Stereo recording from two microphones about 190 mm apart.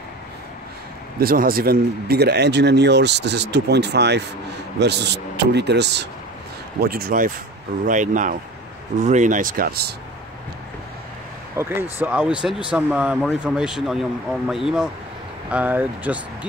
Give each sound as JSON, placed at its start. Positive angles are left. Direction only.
{"t": 1.2, "sound": "a man's voice", "side_deg": -50}
{"t": 6.8, "sound": "speech", "side_deg": -50}
{"t": 11.5, "sound": "speech", "side_deg": -10}